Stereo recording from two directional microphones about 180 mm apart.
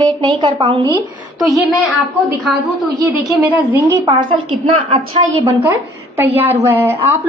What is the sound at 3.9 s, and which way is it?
A woman's voice, 25° right (ahead or behind).